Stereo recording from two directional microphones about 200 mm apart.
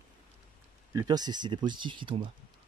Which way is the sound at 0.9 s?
20° right (ahead or behind).